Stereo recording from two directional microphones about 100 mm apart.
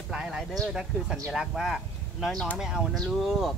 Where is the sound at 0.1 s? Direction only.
5° right (ahead or behind).